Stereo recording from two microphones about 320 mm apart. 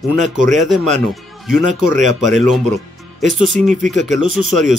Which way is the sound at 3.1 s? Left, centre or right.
Centre.